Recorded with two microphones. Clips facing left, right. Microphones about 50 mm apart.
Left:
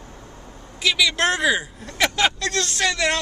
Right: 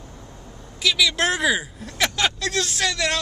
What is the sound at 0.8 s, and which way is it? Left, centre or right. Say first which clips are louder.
Speech: left 1 dB; centre.